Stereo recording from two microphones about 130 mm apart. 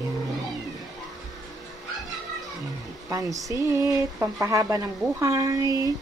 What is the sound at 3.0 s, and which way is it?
Speech, 25° right (ahead or behind).